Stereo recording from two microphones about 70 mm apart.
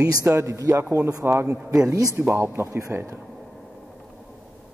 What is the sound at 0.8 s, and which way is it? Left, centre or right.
Speech, right.